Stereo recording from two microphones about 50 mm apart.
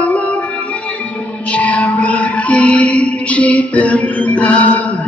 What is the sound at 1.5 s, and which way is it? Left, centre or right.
Music, left.